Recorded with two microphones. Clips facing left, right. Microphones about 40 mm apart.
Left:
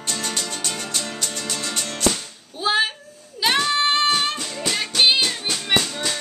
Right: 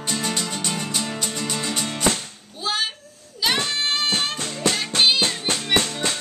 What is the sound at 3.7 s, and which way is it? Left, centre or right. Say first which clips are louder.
Music: left 4 dB; centre.